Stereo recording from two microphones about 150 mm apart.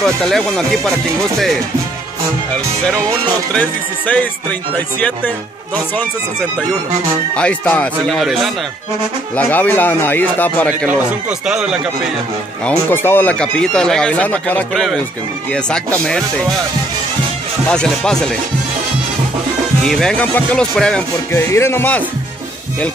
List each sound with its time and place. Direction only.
0.0 s speech: centre (ahead or behind)
3.5 s speech: 10° left (ahead or behind)
7.3 s speech: 5° left (ahead or behind)
9.3 s speech: 10° left (ahead or behind)
10.9 s speech: 5° right (ahead or behind)
12.6 s speech: 15° left (ahead or behind)
17.6 s speech: 5° left (ahead or behind)
19.8 s speech: 5° left (ahead or behind)
21.3 s speech: 20° left (ahead or behind)